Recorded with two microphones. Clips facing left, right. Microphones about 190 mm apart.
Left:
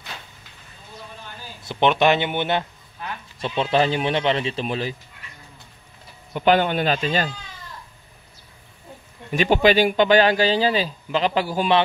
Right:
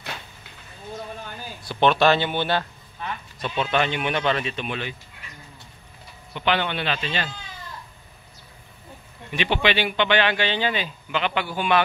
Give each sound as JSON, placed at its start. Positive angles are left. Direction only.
{"t": 1.6, "sound": "speech", "side_deg": 20}
{"t": 6.3, "sound": "speech", "side_deg": 45}
{"t": 9.3, "sound": "speech", "side_deg": 40}